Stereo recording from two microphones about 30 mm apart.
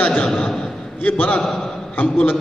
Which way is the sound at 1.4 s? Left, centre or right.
Centre.